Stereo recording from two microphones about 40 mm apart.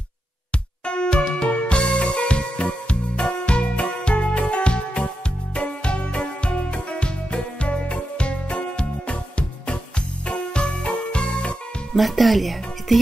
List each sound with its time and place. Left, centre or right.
0.8 s music: left
11.9 s speech: centre